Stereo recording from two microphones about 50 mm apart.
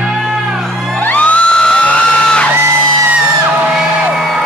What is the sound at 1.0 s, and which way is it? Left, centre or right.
Music, left.